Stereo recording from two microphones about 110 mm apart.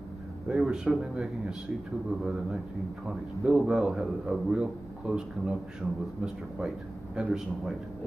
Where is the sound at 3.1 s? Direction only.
5° right (ahead or behind).